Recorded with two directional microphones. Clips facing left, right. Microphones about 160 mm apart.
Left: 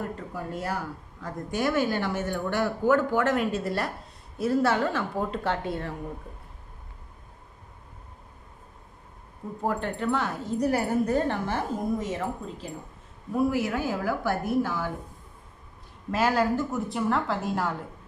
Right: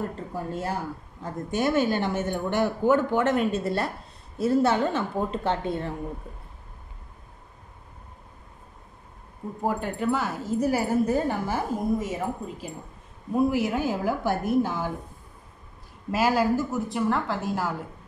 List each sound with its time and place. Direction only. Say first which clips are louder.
0.3 s a woman's voice: right 1 dB; 25° right (ahead or behind)
9.6 s a woman's voice: right 1 dB; 10° right (ahead or behind)
16.1 s a woman's voice: right 1 dB; 10° right (ahead or behind)